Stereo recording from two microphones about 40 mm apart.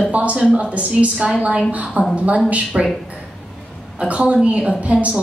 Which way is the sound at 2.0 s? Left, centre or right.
Right.